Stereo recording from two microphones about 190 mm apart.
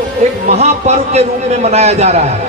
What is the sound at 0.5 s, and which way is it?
A man's voice, 35° right (ahead or behind).